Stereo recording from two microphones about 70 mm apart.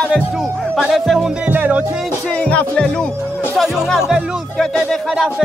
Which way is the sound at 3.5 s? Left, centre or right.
Centre.